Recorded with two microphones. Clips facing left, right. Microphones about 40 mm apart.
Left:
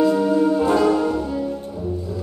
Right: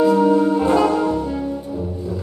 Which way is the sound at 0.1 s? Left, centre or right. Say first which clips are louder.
Right 4 dB; right.